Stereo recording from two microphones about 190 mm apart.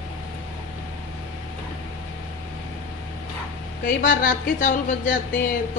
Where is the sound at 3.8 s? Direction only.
45° left (ahead or behind).